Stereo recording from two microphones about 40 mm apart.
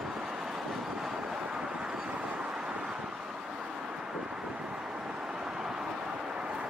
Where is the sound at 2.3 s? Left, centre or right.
Right.